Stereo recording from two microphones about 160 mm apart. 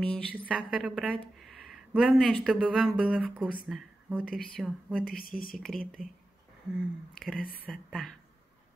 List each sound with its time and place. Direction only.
0.0 s a woman's voice: 5° left (ahead or behind)
0.5 s a woman's voice: 5° right (ahead or behind)
1.4 s a sound: centre (ahead or behind)
2.4 s speech: 5° right (ahead or behind)